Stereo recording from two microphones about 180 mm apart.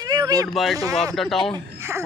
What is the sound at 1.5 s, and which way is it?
Speech, 15° right (ahead or behind).